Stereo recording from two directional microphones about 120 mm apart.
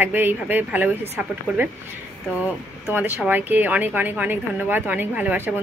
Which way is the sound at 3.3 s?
15° right (ahead or behind).